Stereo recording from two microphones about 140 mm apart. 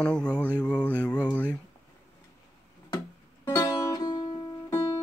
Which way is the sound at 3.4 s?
25° left (ahead or behind).